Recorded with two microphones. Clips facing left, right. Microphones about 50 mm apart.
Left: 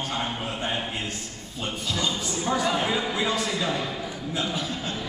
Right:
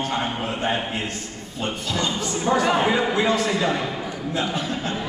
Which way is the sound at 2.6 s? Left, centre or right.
Right.